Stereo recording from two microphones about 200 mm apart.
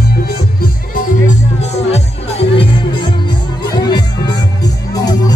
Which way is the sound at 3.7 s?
20° left (ahead or behind).